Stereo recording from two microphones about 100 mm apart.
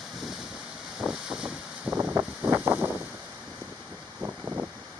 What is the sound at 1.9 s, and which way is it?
Wind noise, 25° right (ahead or behind).